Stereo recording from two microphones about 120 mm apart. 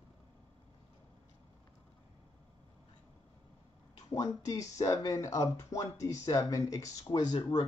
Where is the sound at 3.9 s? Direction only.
35° left (ahead or behind).